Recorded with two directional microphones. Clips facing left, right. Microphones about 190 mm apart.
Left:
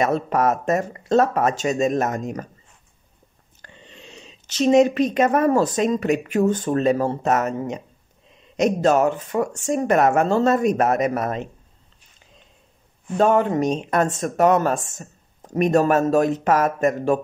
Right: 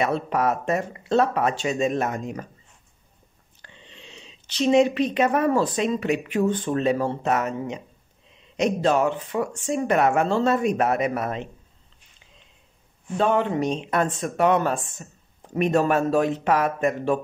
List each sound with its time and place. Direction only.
0.0 s speech: 45° left (ahead or behind)
3.6 s speech: 45° left (ahead or behind)
13.2 s speech: 45° left (ahead or behind)